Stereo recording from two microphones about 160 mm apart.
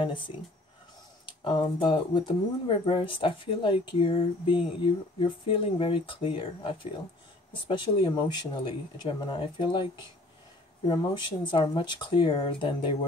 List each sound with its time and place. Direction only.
0.0 s speech: 30° left (ahead or behind)
1.4 s speech: 30° left (ahead or behind)